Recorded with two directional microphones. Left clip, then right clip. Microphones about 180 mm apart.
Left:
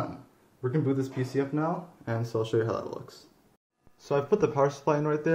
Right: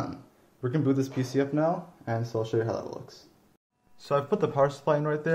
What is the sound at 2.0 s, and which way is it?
Speech, 10° right (ahead or behind).